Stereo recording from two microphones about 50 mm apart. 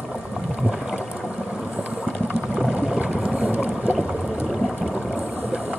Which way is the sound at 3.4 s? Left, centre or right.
Right.